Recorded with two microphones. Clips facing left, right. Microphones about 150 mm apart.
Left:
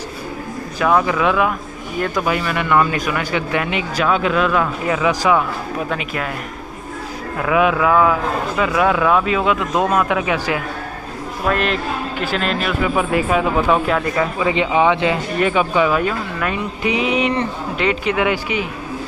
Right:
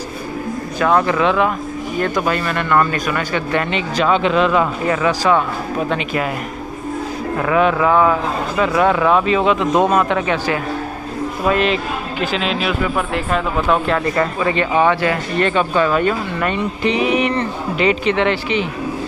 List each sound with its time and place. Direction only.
0.8 s speech: centre (ahead or behind)
7.4 s speech: 5° left (ahead or behind)
11.4 s speech: centre (ahead or behind)
14.5 s speech: 15° left (ahead or behind)
17.7 s speech: centre (ahead or behind)